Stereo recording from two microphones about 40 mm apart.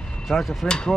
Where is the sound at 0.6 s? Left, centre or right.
Left.